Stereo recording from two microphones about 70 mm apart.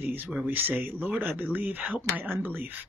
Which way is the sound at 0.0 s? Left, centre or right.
Right.